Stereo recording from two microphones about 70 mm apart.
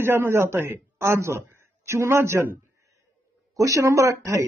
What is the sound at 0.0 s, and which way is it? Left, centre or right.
A man's voice, right.